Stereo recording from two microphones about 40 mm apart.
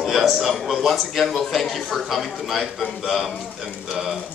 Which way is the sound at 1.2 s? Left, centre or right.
Centre.